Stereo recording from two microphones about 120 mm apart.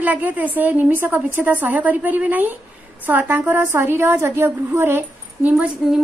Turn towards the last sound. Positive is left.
turn(degrees=-10)  # may be behind; listen again after turning